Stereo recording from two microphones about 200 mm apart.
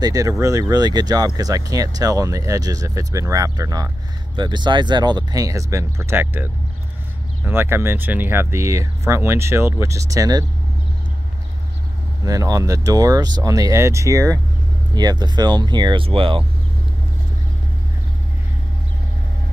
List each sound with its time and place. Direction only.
0.0 s speech: 15° right (ahead or behind)
12.3 s speech: 15° right (ahead or behind)